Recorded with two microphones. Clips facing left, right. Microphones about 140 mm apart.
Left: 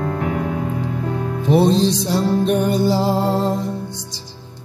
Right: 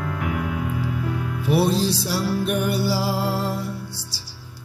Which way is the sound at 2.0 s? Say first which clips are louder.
Left 6 dB; 20° left (ahead or behind).